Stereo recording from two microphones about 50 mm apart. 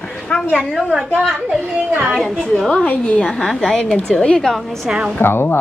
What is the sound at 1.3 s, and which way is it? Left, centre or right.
Speech, centre.